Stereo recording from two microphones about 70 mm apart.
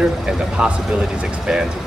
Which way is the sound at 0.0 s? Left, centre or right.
Centre.